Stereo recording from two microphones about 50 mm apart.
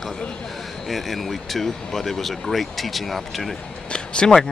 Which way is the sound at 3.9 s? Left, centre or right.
Centre.